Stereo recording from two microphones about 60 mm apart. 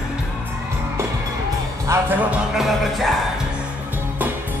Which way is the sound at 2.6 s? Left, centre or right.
Centre.